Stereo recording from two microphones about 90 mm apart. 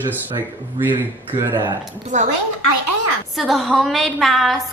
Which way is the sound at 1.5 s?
60° right (ahead or behind).